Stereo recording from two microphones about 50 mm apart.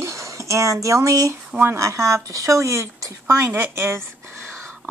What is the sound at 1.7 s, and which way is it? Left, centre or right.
Speech, right.